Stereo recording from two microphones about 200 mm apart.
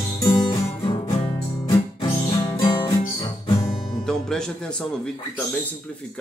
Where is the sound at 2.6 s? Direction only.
25° left (ahead or behind).